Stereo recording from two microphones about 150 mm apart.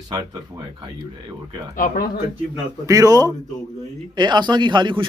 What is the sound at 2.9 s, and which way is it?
Speech, 25° right (ahead or behind).